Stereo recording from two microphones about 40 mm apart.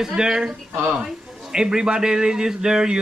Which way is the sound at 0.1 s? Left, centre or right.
Centre.